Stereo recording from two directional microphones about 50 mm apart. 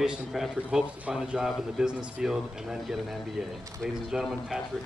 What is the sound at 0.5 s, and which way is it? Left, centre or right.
Speech, centre.